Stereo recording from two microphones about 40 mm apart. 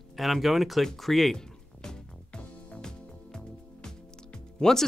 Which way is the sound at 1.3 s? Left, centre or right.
Centre.